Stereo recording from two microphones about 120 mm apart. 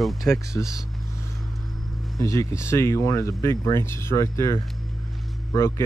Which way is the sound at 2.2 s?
25° left (ahead or behind).